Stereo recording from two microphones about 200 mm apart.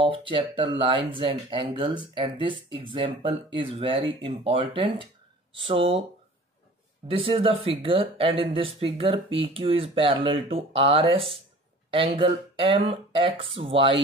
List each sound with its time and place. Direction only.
0.0 s speech: 25° right (ahead or behind)
7.1 s speech: 30° right (ahead or behind)